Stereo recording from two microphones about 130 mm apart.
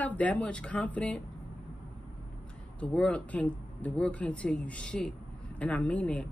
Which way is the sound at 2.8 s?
10° left (ahead or behind).